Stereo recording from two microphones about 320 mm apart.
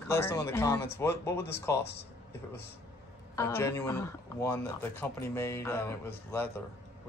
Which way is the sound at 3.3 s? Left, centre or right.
Centre.